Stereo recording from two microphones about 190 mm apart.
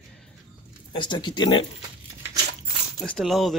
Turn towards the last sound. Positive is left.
turn(degrees=0)  # may be behind; listen again after turning